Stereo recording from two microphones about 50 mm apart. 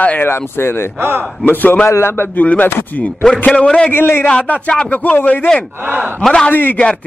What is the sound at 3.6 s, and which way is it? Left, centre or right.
Speech, centre.